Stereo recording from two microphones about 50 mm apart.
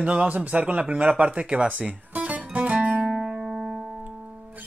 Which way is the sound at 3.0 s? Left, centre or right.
Centre.